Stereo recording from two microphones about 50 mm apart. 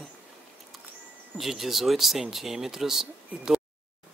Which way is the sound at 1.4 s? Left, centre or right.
Centre.